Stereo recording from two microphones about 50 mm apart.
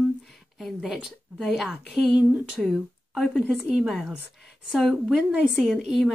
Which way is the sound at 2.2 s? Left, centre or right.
Right.